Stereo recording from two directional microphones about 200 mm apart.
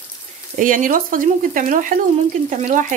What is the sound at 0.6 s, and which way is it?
Speech, 40° right (ahead or behind).